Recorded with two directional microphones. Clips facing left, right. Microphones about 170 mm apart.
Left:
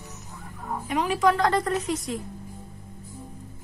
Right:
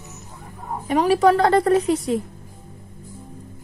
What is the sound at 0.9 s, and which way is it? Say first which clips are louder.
A woman's voice: right 7 dB; 35° right (ahead or behind).